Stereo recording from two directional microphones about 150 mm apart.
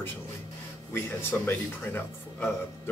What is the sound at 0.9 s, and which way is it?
Speech, 15° left (ahead or behind).